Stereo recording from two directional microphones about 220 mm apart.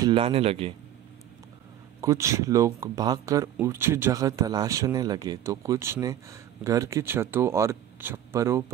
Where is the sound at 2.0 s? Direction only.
15° right (ahead or behind).